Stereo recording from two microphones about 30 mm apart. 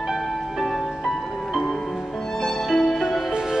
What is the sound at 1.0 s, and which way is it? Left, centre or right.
Music, centre.